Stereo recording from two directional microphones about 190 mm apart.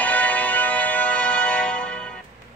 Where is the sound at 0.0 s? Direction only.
10° left (ahead or behind).